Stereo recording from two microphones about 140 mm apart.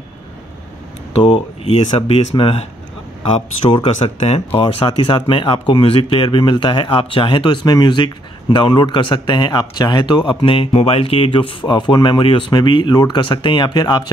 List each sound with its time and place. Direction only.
1.2 s speech: 40° left (ahead or behind)
3.7 s speech: 45° left (ahead or behind)
4.6 s speech: 40° left (ahead or behind)